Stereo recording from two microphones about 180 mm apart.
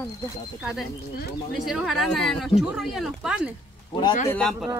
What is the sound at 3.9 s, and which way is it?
Speech, 25° left (ahead or behind).